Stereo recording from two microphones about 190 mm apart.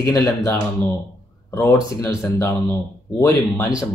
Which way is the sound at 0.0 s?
15° left (ahead or behind).